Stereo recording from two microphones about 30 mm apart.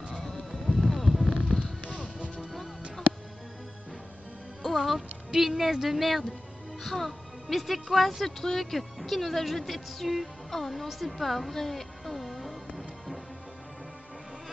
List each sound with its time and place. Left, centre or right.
0.1 s music: centre
1.5 s a sound: left
1.9 s music: right
4.6 s music: centre
5.4 s a woman's voice: centre
10.9 s music: centre